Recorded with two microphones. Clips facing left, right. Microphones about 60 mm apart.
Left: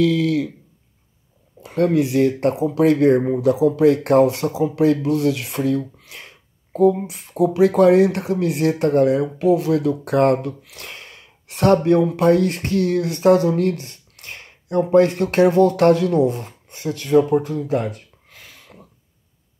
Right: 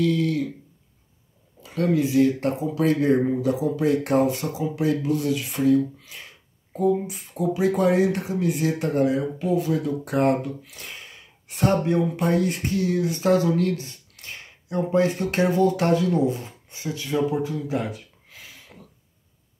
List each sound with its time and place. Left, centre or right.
0.0 s speech: left
1.6 s speech: left
13.2 s speech: left